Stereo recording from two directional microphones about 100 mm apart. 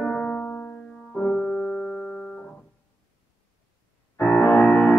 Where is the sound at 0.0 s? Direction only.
10° left (ahead or behind).